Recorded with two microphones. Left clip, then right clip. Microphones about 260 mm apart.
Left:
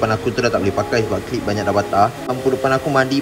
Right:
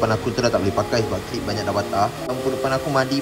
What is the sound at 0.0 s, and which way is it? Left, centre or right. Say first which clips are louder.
Speech: left 2 dB; centre.